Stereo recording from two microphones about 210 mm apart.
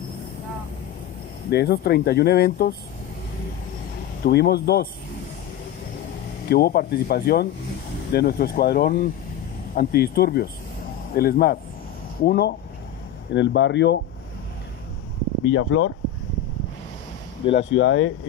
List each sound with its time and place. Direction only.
1.5 s speech: 50° left (ahead or behind)
4.2 s speech: 50° left (ahead or behind)
6.5 s speech: 45° left (ahead or behind)
15.4 s speech: 65° left (ahead or behind)
17.4 s speech: 25° left (ahead or behind)
17.7 s speech: 65° left (ahead or behind)